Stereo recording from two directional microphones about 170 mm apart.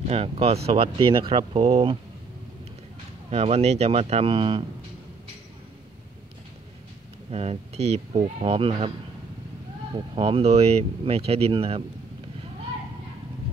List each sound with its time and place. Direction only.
0.0 s speech: 35° right (ahead or behind)
3.3 s speech: 40° right (ahead or behind)
7.2 s speech: 35° right (ahead or behind)
9.9 s speech: 30° right (ahead or behind)